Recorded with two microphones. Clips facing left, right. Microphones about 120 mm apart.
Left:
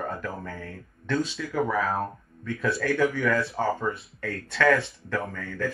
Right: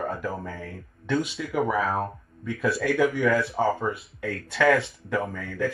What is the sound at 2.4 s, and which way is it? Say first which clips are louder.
Speech: right 2 dB; 5° right (ahead or behind).